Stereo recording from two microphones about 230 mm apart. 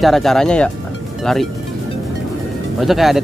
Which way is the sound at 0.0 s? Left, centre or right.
Centre.